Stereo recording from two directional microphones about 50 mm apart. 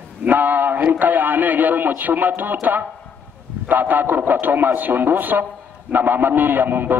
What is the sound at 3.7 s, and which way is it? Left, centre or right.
A man's voice, right.